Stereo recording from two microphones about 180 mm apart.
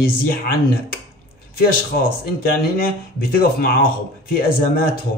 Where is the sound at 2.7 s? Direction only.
55° left (ahead or behind).